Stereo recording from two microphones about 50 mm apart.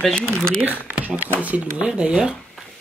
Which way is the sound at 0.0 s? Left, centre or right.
Centre.